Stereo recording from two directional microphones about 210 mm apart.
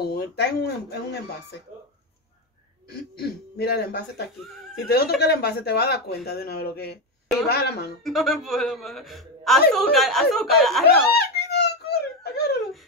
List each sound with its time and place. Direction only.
0.0 s speech: 50° left (ahead or behind)
3.2 s speech: 50° left (ahead or behind)
8.0 s a woman's voice: centre (ahead or behind)
11.1 s giggle: 50° left (ahead or behind)